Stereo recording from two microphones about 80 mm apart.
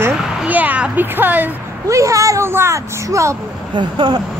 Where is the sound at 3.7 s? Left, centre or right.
Right.